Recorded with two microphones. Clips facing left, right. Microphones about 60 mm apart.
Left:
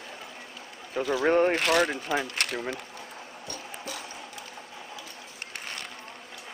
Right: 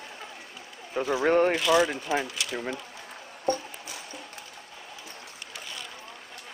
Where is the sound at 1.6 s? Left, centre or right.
Left.